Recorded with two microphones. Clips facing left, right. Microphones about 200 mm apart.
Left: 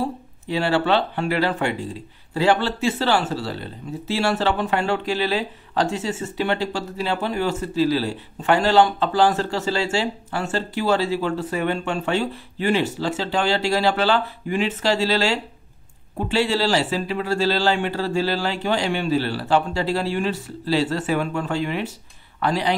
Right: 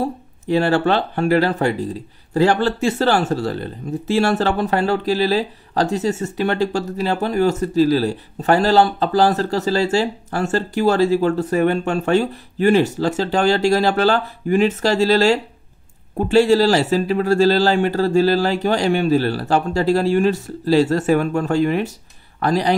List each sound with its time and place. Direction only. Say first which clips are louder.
0.5 s speech: right 4 dB; 45° right (ahead or behind)